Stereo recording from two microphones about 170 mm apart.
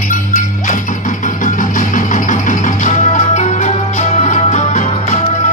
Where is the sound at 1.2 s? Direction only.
50° left (ahead or behind).